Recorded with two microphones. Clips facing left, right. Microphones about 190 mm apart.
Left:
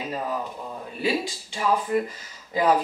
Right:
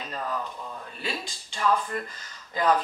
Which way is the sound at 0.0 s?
10° left (ahead or behind).